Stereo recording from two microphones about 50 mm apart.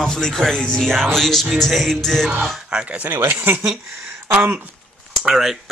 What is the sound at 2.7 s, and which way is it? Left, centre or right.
Speech, centre.